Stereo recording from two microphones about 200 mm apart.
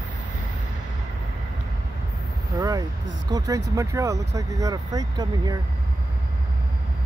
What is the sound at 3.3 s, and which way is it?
Speech, 20° right (ahead or behind).